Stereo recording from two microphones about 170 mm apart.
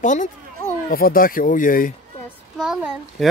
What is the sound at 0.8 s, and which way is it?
Speech, 60° left (ahead or behind).